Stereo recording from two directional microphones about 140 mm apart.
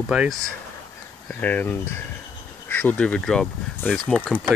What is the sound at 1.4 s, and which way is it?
Speech, 10° left (ahead or behind).